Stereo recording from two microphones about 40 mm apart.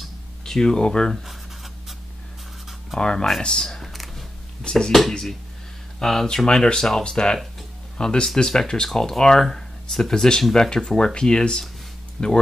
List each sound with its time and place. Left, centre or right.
0.5 s speech: centre
1.1 s writing: centre
3.0 s speech: left
5.9 s speech: centre